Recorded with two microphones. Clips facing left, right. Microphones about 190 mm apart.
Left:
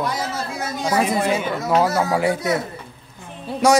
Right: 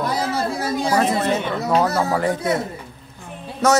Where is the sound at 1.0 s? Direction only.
10° left (ahead or behind).